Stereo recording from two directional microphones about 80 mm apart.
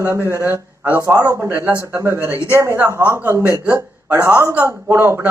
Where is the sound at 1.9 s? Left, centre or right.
Right.